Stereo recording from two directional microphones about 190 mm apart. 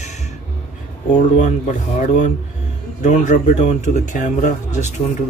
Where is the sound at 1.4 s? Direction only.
40° left (ahead or behind).